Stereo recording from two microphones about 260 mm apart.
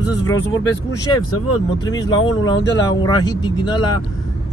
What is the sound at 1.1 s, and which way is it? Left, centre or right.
Speech, left.